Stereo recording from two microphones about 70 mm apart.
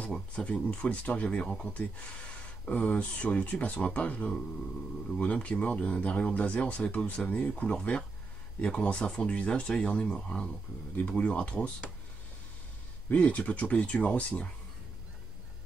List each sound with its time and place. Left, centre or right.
0.1 s speech: centre
13.1 s speech: left